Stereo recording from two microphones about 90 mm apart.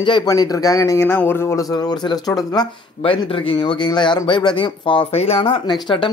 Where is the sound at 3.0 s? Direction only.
80° left.